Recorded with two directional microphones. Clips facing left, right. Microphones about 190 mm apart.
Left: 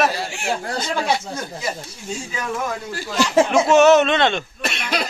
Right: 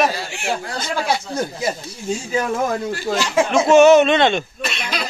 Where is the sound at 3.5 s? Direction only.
Centre (ahead or behind).